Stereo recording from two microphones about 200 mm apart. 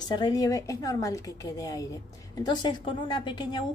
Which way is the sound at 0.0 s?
20° left (ahead or behind).